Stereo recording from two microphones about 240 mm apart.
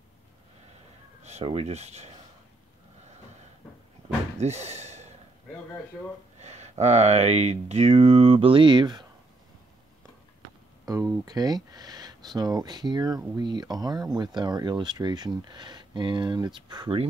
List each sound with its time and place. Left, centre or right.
1.2 s speech: right
4.4 s speech: right
6.4 s speech: right
10.9 s speech: centre